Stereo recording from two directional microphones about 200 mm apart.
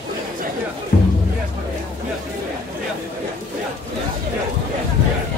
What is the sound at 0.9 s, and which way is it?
Music, 40° left (ahead or behind).